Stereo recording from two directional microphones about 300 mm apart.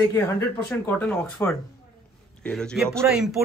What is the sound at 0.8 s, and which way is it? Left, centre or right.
Speech, centre.